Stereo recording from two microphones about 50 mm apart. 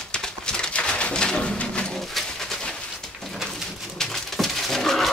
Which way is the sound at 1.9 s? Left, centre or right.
Centre.